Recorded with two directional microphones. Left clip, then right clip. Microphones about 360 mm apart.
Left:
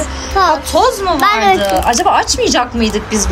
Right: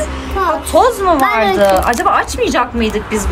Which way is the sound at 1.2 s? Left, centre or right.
Centre.